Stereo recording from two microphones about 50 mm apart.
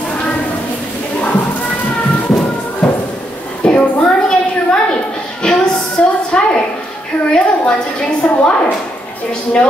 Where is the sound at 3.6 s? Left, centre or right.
Left.